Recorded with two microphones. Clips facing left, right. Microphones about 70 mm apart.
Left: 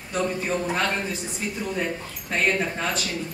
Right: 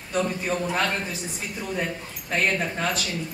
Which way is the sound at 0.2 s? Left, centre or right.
Centre.